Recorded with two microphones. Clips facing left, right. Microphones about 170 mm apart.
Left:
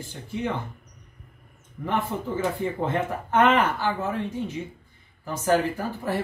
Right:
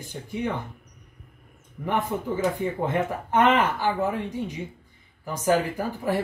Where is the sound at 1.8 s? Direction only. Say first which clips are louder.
Right 1 dB; 15° right (ahead or behind).